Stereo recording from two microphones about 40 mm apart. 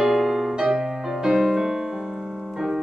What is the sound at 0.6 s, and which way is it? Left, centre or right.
Music, centre.